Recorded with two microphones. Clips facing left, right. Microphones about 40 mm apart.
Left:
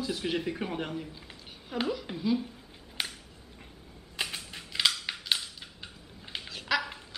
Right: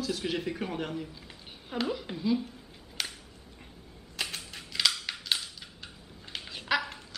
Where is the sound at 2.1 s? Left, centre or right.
Centre.